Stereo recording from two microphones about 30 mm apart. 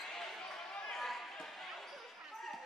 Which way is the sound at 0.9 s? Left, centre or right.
Centre.